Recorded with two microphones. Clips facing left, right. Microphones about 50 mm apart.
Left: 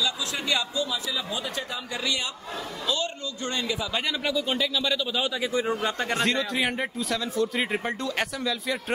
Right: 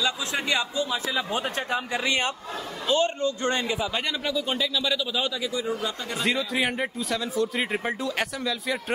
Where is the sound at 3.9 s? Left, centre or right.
Centre.